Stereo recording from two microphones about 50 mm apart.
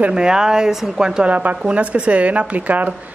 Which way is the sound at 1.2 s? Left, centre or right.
Right.